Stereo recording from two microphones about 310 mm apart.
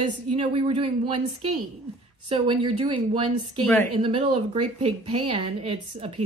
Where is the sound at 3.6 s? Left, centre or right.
Centre.